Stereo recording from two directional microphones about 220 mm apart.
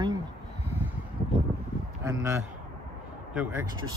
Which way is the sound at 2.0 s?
15° right (ahead or behind).